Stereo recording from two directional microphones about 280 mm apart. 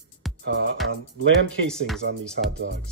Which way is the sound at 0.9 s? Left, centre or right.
Right.